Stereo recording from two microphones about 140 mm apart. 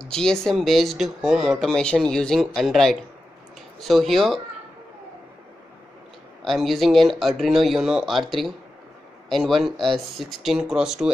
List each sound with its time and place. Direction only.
0.0 s speech: 5° left (ahead or behind)
6.4 s speech: centre (ahead or behind)